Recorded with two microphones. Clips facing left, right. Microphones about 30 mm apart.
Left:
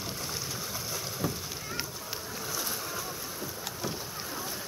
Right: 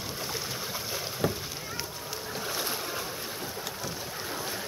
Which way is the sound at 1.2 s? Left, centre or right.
Right.